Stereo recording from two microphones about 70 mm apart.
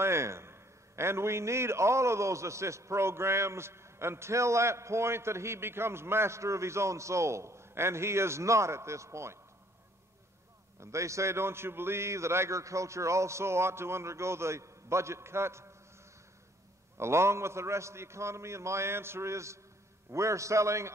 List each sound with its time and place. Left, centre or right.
0.0 s a man's voice: right
10.8 s a man's voice: right
16.9 s a man's voice: right